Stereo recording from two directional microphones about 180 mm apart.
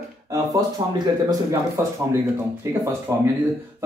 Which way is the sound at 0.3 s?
20° right (ahead or behind).